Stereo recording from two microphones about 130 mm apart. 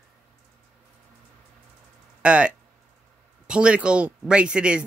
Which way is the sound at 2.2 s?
10° right (ahead or behind).